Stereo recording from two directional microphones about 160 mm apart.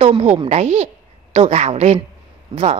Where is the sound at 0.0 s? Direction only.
45° right (ahead or behind).